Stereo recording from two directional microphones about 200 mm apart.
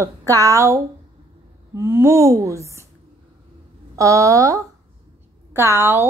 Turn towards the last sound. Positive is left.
turn(degrees=-10)  # may be behind; listen again after turning